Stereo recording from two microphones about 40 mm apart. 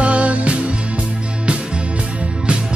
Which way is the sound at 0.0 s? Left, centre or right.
Right.